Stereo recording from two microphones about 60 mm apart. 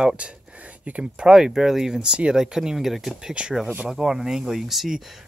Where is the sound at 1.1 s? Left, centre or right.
Centre.